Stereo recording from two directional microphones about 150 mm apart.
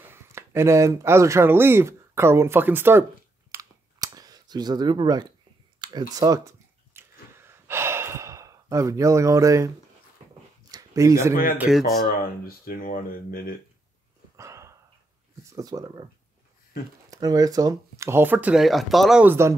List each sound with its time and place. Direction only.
0.1 s speech: 15° right (ahead or behind)
3.5 s camera: 25° right (ahead or behind)
5.8 s a sound: 25° right (ahead or behind)
10.7 s a sound: 25° right (ahead or behind)
11.5 s speech: 10° right (ahead or behind)
12.2 s speech: 75° left (ahead or behind)
14.3 s a sound: 20° right (ahead or behind)
15.5 s speech: 25° right (ahead or behind)
17.1 s speech: 25° right (ahead or behind); by 19.2 s centre (ahead or behind)
19.2 s speech: 15° right (ahead or behind)